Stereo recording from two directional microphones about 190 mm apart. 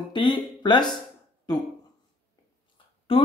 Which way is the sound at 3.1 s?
30° left (ahead or behind).